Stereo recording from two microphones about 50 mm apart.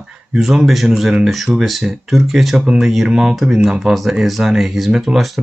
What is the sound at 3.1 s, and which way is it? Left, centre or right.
Speech, centre.